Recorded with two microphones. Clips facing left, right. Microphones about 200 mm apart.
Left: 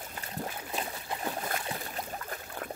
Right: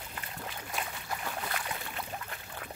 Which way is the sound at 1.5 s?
35° left (ahead or behind).